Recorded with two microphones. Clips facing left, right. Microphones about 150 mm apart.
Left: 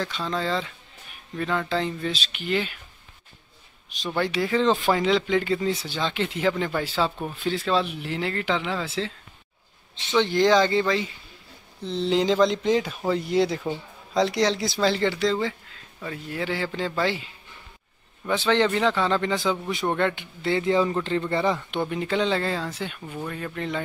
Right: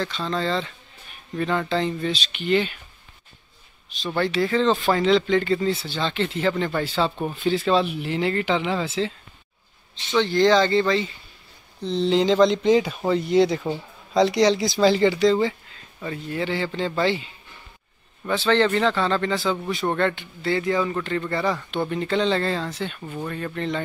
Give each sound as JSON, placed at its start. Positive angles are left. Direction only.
{"t": 0.0, "sound": "speech", "side_deg": 10}
{"t": 4.0, "sound": "speech", "side_deg": 10}
{"t": 10.1, "sound": "speech", "side_deg": 15}
{"t": 18.3, "sound": "speech", "side_deg": 15}